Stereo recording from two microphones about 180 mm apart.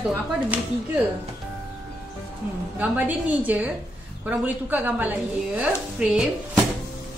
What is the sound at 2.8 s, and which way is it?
A woman's voice, 10° right (ahead or behind).